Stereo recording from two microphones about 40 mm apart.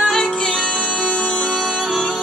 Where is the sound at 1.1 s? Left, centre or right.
Left.